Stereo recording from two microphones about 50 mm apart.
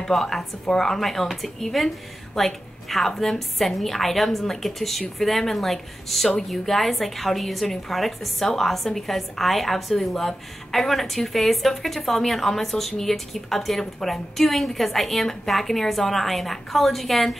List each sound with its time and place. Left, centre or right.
0.0 s a woman's voice: centre